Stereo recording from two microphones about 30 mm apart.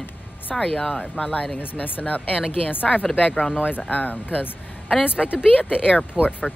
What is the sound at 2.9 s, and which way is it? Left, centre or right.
Speech, centre.